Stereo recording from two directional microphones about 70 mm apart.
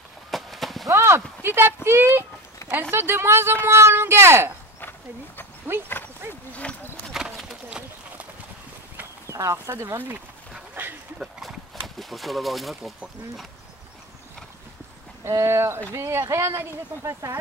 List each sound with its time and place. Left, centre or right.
0.3 s horse: centre
0.9 s clip-clop: right
1.4 s speech: right
5.7 s speech: right
6.5 s a sound: left
7.1 s clip-clop: centre
9.3 s speech: right
10.7 s a sound: right
11.4 s a sound: centre
15.2 s speech: right